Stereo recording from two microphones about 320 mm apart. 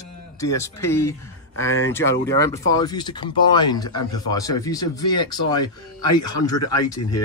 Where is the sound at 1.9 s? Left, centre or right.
Centre.